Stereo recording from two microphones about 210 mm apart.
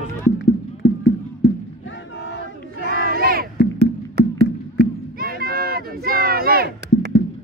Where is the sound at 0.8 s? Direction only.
60° left (ahead or behind).